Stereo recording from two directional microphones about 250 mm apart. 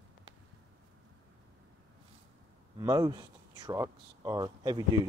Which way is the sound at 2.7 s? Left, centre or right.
Centre.